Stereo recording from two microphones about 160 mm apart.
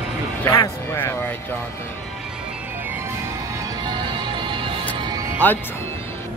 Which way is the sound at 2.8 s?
10° right (ahead or behind).